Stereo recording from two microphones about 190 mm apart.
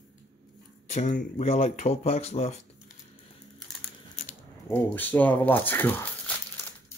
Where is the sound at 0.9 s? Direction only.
40° left (ahead or behind).